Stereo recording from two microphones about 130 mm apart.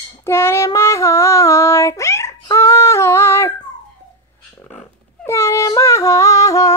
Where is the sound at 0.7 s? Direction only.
20° left (ahead or behind).